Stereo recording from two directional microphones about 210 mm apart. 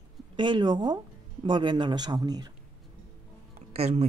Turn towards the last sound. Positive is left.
turn(degrees=-30)  # may be behind; listen again after turning